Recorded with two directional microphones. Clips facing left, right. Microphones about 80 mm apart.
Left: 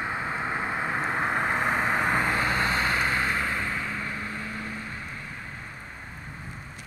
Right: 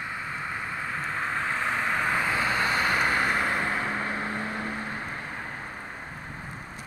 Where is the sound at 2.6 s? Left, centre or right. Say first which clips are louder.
Right 1 dB; centre; by 5.5 s right.